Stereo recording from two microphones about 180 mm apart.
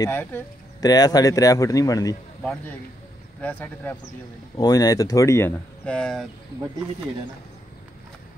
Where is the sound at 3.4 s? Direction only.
10° left (ahead or behind).